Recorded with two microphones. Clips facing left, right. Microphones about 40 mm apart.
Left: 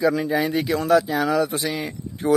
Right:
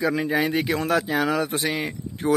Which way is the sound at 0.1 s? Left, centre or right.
Centre.